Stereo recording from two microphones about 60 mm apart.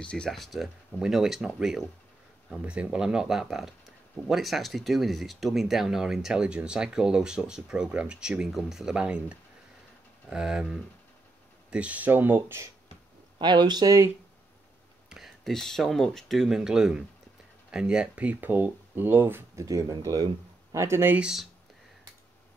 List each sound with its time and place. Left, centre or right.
0.0 s speech: centre
0.3 s speech: centre
2.6 s speech: right; by 8.9 s centre
8.9 s speech: centre
11.7 s speech: right
13.8 s speech: right
15.0 s a sound: centre
15.5 s speech: centre
16.4 s speech: centre; by 19.4 s right
19.5 s speech: right
20.7 s speech: right
21.2 s speech: centre